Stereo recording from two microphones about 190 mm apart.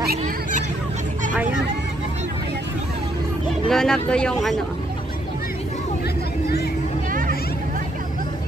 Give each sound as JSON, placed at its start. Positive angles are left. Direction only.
{"t": 0.2, "sound": "fowl", "side_deg": -40}
{"t": 3.6, "sound": "speech", "side_deg": 5}
{"t": 7.1, "sound": "a sound", "side_deg": -45}